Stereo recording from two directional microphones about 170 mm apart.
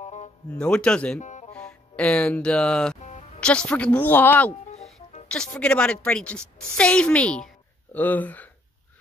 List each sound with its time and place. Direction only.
0.0 s music: 45° left (ahead or behind)
0.6 s speech: 5° left (ahead or behind)
1.2 s music: 45° left (ahead or behind)
1.5 s speech: 5° left (ahead or behind)
5.6 s a woman's voice: 5° left (ahead or behind)